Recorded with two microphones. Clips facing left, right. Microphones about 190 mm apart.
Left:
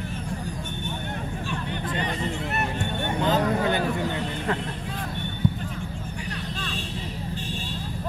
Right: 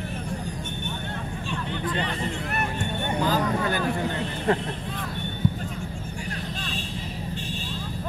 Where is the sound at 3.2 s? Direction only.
20° left (ahead or behind).